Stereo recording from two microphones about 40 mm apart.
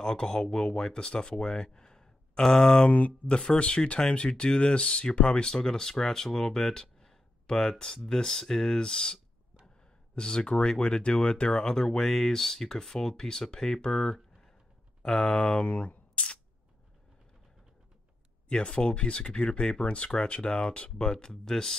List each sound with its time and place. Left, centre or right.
0.0 s speech: centre
15.6 s a sound: left
18.5 s speech: left
21.1 s speech: centre